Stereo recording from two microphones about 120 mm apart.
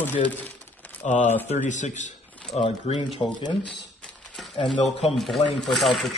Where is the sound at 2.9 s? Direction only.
60° left (ahead or behind).